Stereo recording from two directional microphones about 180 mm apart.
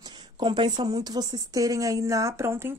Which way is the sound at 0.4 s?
25° right (ahead or behind).